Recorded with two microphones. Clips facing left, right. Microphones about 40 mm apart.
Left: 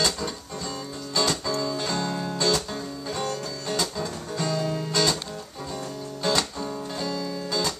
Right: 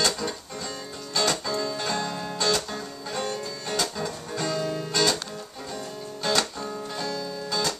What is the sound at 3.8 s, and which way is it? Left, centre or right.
Music, centre.